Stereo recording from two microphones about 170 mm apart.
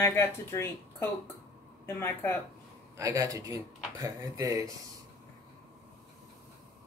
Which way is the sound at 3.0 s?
20° right (ahead or behind).